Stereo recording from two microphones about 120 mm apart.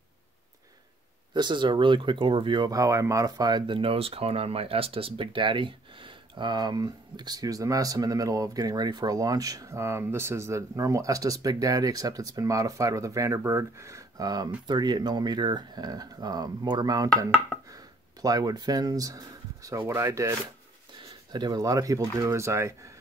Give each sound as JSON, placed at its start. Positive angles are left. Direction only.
{"t": 1.3, "sound": "speech", "side_deg": -40}
{"t": 21.3, "sound": "speech", "side_deg": -35}